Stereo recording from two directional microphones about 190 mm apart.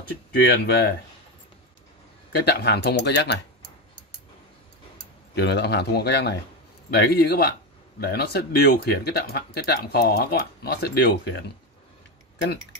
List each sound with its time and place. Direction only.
0.3 s speech: 55° left (ahead or behind)
2.3 s speech: 60° left (ahead or behind)
5.3 s speech: 60° left (ahead or behind)